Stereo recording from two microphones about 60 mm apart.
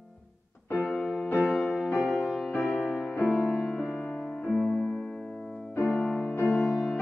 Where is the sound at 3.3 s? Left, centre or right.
Centre.